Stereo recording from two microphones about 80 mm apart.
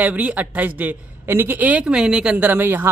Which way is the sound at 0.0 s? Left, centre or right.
Right.